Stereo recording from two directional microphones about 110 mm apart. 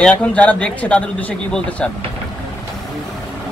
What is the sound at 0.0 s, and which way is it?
Speech, 10° left (ahead or behind).